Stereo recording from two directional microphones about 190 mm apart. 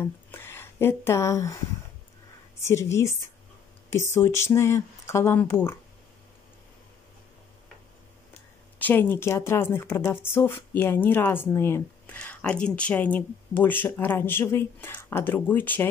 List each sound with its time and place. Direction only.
0.0 s speech: 10° left (ahead or behind)
2.6 s speech: 15° left (ahead or behind)
8.7 s speech: 10° left (ahead or behind)